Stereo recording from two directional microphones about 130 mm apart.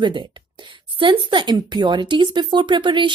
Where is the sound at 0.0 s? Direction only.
40° right (ahead or behind).